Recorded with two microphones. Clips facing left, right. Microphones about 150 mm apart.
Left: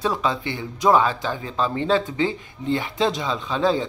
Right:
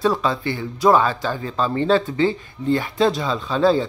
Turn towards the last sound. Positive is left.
turn(degrees=15)  # may be behind; listen again after turning